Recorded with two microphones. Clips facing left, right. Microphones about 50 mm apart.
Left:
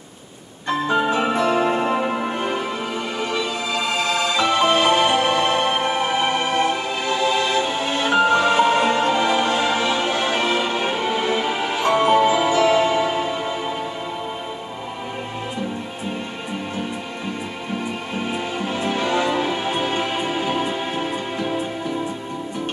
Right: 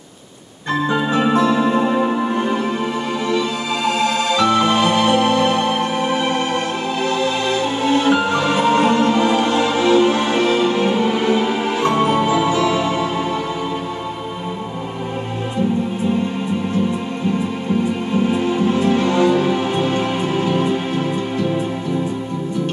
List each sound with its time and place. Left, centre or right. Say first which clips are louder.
1.1 s music: right 3 dB; left
4.1 s music: right 1 dB; left
7.8 s music: right 4 dB; left
12.5 s music: left 1 dB; left
18.3 s music: right 7 dB; left